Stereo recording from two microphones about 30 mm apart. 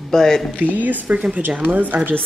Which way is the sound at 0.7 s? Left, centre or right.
Right.